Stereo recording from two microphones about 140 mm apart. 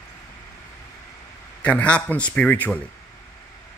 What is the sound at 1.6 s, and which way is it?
Speech, 10° left (ahead or behind).